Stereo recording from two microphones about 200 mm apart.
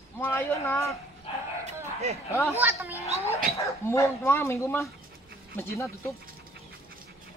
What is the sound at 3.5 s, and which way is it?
A man's voice, 15° left (ahead or behind).